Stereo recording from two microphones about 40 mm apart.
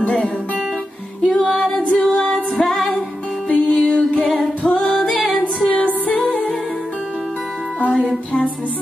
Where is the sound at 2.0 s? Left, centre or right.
Left.